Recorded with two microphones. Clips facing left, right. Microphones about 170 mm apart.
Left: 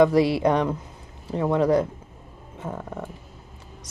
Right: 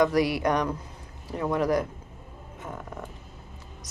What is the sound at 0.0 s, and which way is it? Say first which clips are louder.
Speech: left 5 dB; 25° left (ahead or behind).